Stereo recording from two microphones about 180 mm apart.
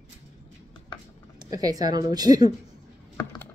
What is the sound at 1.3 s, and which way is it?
Speech, 20° right (ahead or behind).